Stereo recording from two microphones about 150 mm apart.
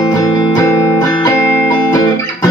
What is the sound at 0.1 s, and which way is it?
Music, 25° left (ahead or behind).